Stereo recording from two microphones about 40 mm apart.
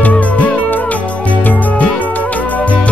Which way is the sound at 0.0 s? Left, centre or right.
Left.